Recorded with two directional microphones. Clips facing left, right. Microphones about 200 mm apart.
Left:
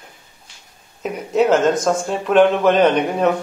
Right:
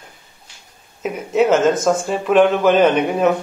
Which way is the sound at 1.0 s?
Centre (ahead or behind).